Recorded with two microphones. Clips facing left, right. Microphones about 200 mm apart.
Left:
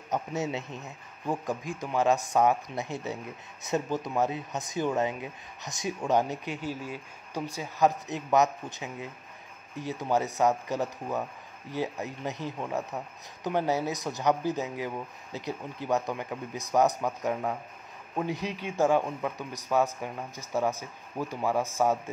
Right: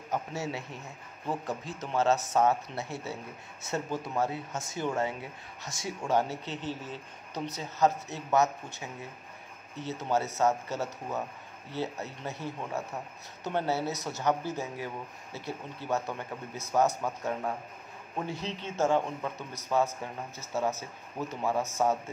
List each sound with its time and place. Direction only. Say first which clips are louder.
0.1 s speech: left 3 dB; 20° left (ahead or behind)
18.2 s speech: left 4 dB; 15° left (ahead or behind)